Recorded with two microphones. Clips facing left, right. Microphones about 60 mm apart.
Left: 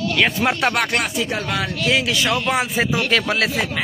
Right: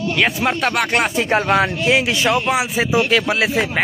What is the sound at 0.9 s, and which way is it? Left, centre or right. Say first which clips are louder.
A man's voice: right 5 dB; right.